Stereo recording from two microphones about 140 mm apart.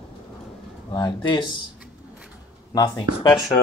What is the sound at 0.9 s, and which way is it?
Speech, 30° left (ahead or behind).